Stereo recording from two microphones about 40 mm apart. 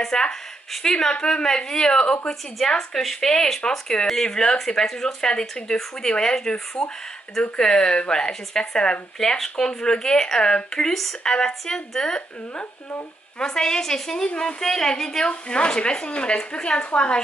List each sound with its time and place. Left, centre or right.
0.1 s a woman's voice: centre
10.9 s speech: centre
11.2 s speech: centre
13.4 s a woman's voice: centre